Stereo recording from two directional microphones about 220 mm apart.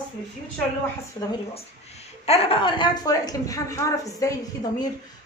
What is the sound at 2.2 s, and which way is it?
A woman's voice, 25° left (ahead or behind).